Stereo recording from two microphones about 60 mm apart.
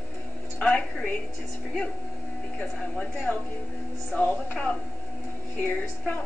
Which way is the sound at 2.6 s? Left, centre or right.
Centre.